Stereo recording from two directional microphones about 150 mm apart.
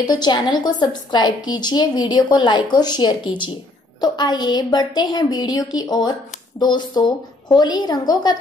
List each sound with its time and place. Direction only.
0.0 s a woman's voice: 25° left (ahead or behind)